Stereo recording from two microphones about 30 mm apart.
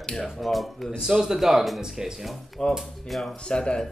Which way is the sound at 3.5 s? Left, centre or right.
Left.